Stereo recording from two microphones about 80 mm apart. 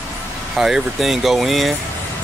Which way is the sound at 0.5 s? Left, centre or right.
Centre.